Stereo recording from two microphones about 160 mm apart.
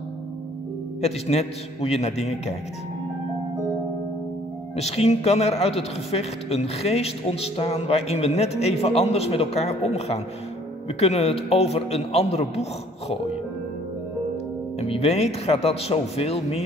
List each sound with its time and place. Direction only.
1.0 s speech: 40° left (ahead or behind)
4.7 s speech: 40° left (ahead or behind)
14.8 s speech: 40° left (ahead or behind)